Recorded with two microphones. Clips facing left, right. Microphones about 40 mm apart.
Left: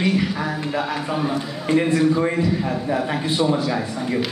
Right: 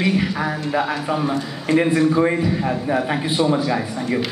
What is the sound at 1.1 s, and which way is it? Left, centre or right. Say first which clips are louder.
Speech: right 1 dB; centre.